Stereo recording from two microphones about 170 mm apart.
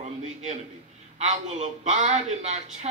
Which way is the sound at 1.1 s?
45° right (ahead or behind).